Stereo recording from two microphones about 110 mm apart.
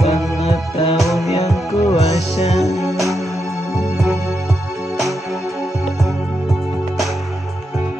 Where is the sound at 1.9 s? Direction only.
80° left.